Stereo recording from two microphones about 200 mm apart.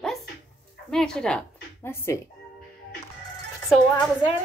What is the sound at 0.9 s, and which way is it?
A woman's voice, 5° left (ahead or behind).